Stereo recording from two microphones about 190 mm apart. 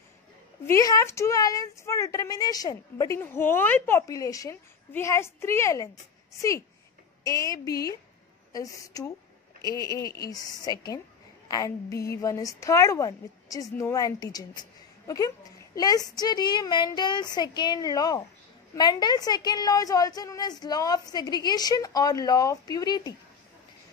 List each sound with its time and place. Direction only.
0.7 s a woman's voice: 15° left (ahead or behind)